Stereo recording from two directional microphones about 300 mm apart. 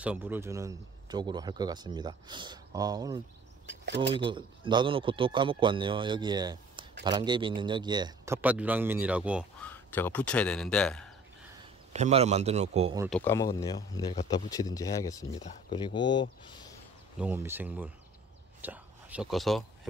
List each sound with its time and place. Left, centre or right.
0.0 s speech: centre
3.6 s speech: right
4.1 s speech: centre
11.9 s a man's voice: right
13.2 s speech: centre
17.2 s speech: centre
18.6 s whispering: centre